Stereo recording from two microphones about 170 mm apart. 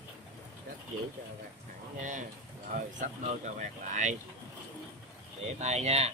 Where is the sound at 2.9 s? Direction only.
50° right (ahead or behind).